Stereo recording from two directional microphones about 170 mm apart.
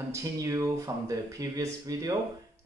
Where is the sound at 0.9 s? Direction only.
20° right (ahead or behind).